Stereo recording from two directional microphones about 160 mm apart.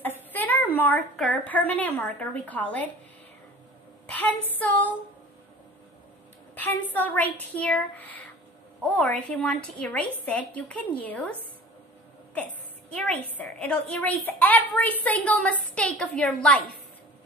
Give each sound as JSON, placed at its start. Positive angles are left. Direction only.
{"t": 0.0, "sound": "a woman's voice", "side_deg": 10}
{"t": 4.1, "sound": "a woman's voice", "side_deg": 10}
{"t": 6.5, "sound": "a woman's voice", "side_deg": 10}
{"t": 12.9, "sound": "a woman's voice", "side_deg": 10}